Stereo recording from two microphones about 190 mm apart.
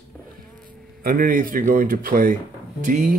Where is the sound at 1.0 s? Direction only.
45° right (ahead or behind).